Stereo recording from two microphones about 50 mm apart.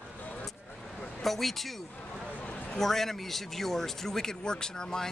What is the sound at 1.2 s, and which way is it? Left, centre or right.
Speech, centre.